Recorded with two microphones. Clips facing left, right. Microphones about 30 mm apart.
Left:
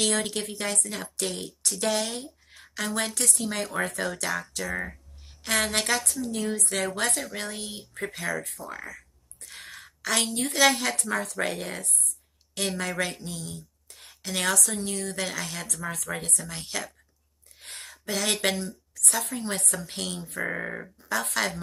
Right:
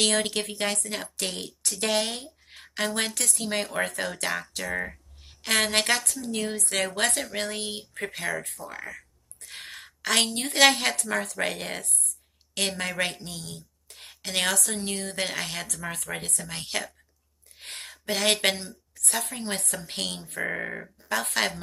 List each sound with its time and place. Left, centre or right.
0.0 s a woman's voice: right
6.2 s a woman's voice: right
11.0 s a woman's voice: right
15.9 s a woman's voice: right
17.6 s a sound: right
19.7 s a woman's voice: right
20.4 s speech: centre
21.1 s a woman's voice: right